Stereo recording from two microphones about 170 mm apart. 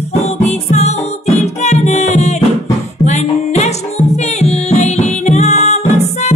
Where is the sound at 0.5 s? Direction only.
40° left (ahead or behind).